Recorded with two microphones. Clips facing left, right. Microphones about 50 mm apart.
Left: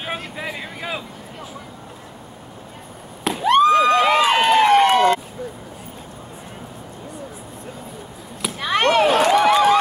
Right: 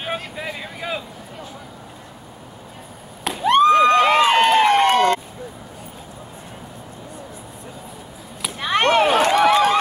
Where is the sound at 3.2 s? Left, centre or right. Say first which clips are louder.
Left 2 dB; centre.